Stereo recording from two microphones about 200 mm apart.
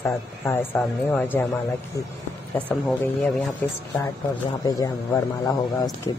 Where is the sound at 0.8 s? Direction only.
5° left (ahead or behind).